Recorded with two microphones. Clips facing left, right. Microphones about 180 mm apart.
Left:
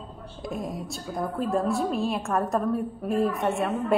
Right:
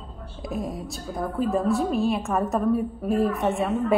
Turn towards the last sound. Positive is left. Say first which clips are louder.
# right 2 dB
turn(degrees=0)  # may be behind; listen again after turning